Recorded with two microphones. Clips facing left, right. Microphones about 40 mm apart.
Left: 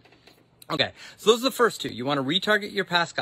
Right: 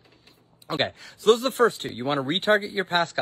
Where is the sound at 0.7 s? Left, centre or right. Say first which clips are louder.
Even; left.